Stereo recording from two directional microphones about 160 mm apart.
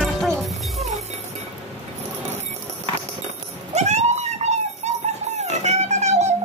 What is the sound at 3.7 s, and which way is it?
Dog, 45° right (ahead or behind).